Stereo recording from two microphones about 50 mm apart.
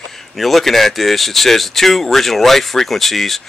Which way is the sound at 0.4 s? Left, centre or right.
Centre.